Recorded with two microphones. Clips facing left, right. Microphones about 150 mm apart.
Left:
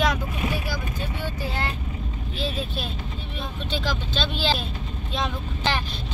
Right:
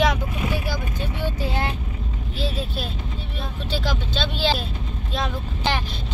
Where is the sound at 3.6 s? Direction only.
10° right (ahead or behind).